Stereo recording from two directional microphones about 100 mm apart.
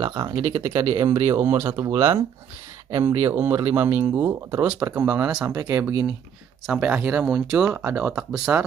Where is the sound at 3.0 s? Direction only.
25° right (ahead or behind).